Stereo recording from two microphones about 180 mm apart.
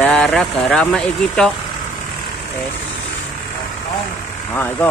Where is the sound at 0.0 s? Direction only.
5° left (ahead or behind).